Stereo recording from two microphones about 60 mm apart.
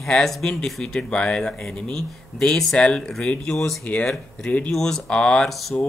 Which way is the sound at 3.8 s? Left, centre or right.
Left.